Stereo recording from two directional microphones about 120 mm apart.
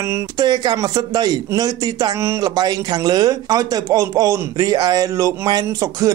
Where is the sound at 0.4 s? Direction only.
35° right (ahead or behind).